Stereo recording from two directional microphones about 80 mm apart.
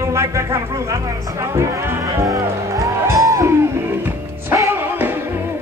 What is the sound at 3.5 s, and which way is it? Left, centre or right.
Music, right.